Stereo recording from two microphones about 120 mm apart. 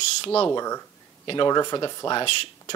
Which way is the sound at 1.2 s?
40° left (ahead or behind).